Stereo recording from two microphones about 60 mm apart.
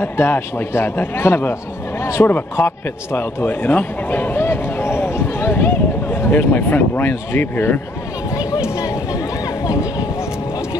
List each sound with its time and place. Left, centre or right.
0.0 s a man's voice: left
3.6 s speech: left
9.7 s a sound: left